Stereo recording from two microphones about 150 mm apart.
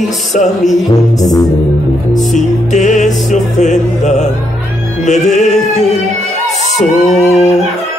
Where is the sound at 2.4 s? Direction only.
55° left (ahead or behind).